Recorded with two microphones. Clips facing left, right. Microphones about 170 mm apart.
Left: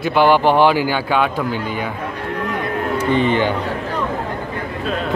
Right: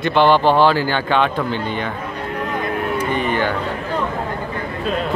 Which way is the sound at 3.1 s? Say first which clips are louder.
Left 5 dB; 20° left (ahead or behind).